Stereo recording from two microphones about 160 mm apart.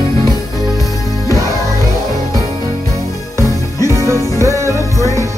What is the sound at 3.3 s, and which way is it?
Music, 20° right (ahead or behind).